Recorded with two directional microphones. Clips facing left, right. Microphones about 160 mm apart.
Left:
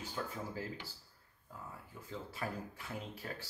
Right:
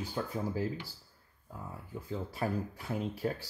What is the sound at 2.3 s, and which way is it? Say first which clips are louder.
Speech: right 8 dB; 35° right (ahead or behind).